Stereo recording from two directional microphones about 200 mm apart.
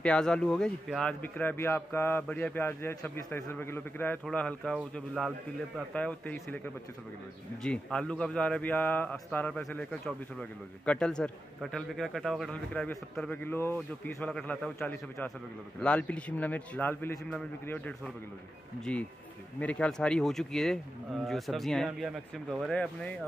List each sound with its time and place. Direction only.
0.0 s a man's voice: 5° left (ahead or behind)
19.6 s speech: 5° left (ahead or behind)